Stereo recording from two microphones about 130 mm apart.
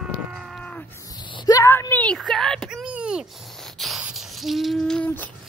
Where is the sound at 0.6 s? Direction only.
10° left (ahead or behind).